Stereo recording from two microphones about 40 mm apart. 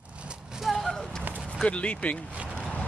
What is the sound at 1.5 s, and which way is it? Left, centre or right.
Speech, left.